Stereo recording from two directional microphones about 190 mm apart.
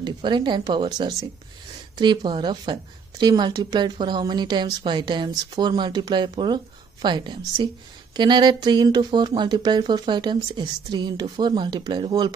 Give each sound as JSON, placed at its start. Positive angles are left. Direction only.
{"t": 0.0, "sound": "speech", "side_deg": -25}